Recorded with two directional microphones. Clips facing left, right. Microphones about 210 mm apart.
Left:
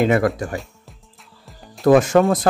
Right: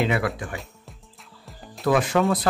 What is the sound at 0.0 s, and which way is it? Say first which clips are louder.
Speech: left 7 dB; 45° left (ahead or behind).